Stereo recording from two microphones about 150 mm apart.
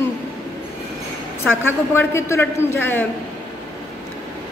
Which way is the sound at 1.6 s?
15° left (ahead or behind).